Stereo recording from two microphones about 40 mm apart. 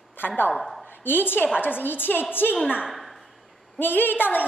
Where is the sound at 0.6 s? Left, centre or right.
Centre.